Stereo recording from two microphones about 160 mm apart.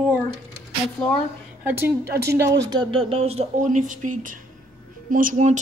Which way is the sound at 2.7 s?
30° right (ahead or behind).